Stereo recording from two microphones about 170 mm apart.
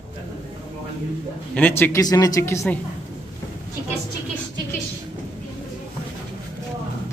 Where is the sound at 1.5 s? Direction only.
10° left (ahead or behind).